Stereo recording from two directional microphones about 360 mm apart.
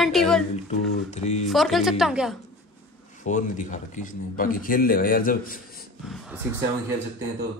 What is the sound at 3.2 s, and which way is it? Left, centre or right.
A man's voice, left.